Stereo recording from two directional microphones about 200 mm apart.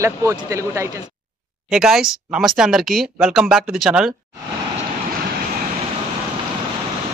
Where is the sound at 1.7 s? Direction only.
Centre (ahead or behind).